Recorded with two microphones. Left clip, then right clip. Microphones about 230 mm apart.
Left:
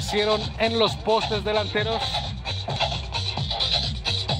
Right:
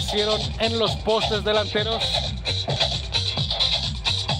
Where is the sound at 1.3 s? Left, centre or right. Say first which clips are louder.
Right 2 dB; centre.